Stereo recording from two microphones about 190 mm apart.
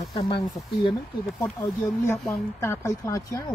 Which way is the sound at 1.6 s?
15° left (ahead or behind).